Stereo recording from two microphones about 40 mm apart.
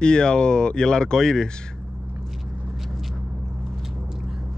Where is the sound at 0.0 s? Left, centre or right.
Left.